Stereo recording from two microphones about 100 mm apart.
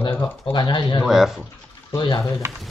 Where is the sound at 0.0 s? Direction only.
50° left (ahead or behind).